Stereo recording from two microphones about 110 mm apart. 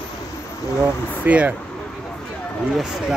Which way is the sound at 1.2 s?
10° right (ahead or behind).